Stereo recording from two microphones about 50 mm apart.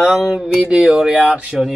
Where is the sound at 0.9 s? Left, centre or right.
Centre.